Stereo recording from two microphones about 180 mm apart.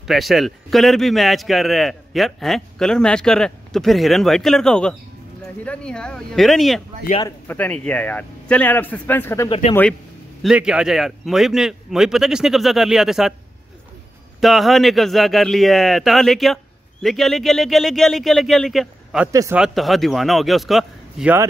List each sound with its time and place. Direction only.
0.0 s a man's voice: centre (ahead or behind)
10.4 s a man's voice: 5° right (ahead or behind)
14.4 s a man's voice: centre (ahead or behind)
19.3 s speech: 15° right (ahead or behind)
19.6 s a man's voice: centre (ahead or behind)